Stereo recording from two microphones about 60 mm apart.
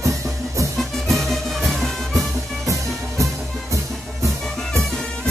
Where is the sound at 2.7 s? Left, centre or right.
Right.